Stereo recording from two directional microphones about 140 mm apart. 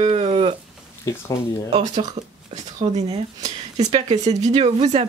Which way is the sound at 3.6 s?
50° right (ahead or behind).